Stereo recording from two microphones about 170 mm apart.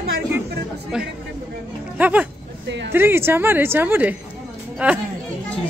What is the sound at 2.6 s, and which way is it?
Speech, 90° right.